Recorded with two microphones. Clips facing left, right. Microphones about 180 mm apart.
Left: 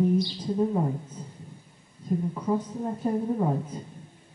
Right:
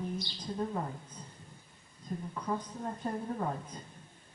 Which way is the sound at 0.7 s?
20° left (ahead or behind).